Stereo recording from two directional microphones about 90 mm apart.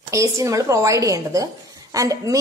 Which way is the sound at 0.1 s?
35° right (ahead or behind).